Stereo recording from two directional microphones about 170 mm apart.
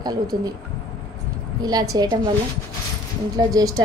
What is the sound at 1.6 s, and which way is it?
Speech, 25° right (ahead or behind).